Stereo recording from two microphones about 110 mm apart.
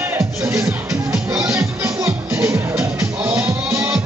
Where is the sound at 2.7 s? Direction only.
10° right (ahead or behind).